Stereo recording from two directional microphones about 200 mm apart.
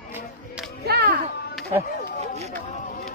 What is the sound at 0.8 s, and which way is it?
Music, 50° right (ahead or behind).